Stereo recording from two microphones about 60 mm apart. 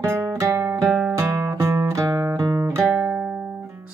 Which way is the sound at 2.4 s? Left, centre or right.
Right.